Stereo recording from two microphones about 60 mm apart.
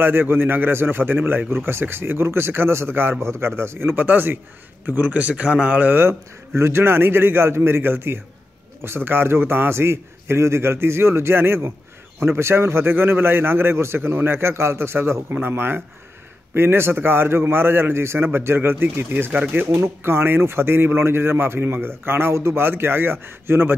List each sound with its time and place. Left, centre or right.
0.0 s a man's voice: right